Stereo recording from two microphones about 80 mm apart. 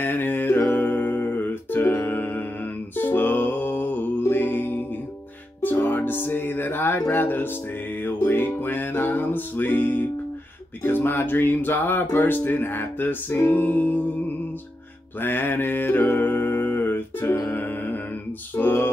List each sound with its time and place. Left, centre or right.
0.0 s music: left
15.1 s music: left